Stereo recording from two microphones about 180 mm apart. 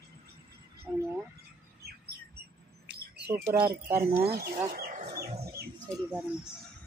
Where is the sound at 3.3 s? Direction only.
15° right (ahead or behind).